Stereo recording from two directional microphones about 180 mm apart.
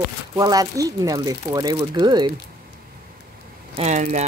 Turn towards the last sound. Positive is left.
turn(degrees=-40)  # may be behind; listen again after turning